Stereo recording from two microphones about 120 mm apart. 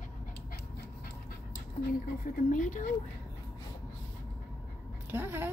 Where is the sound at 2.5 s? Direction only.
90° left.